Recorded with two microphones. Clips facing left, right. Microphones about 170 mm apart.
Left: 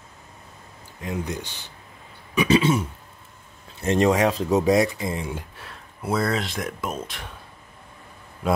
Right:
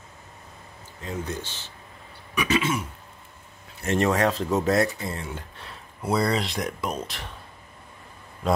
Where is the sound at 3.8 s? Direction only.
20° left (ahead or behind).